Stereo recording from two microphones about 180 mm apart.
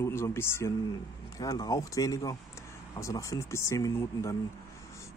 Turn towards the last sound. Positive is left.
turn(degrees=15)  # may be behind; listen again after turning